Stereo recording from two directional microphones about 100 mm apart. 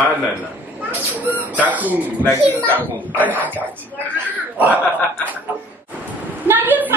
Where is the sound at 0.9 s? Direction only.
15° right (ahead or behind).